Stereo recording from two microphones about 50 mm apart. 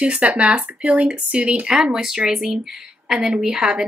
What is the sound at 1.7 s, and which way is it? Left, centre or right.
Speech, centre.